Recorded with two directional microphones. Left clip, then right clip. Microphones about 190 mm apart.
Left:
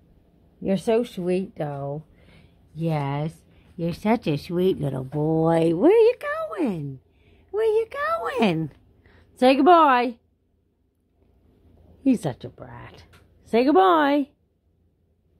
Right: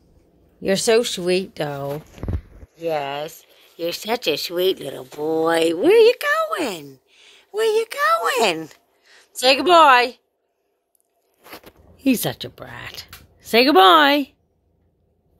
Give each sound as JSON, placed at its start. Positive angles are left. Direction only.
{"t": 0.6, "sound": "a woman's voice", "side_deg": 0}
{"t": 12.0, "sound": "speech", "side_deg": 0}